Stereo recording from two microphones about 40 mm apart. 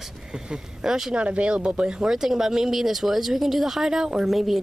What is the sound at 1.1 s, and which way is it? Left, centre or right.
Speech, right.